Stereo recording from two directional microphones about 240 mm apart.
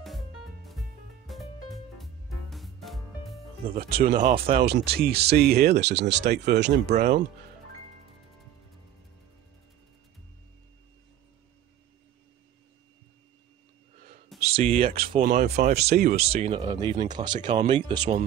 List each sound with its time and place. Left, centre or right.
0.7 s music: centre
3.7 s speech: right
14.4 s speech: right
16.3 s speech: right